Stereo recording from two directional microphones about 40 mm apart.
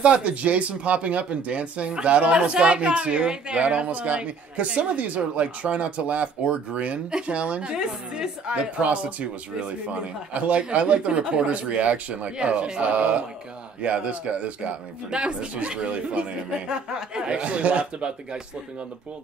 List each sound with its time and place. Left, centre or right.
0.0 s a man's voice: right
12.9 s a man's voice: right